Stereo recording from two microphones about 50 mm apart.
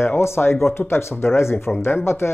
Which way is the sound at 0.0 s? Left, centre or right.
Left.